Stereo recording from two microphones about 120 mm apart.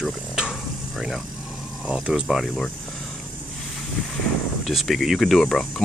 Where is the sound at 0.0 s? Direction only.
Centre (ahead or behind).